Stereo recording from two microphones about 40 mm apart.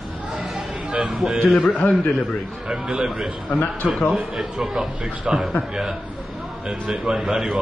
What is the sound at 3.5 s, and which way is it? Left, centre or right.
Speech, left.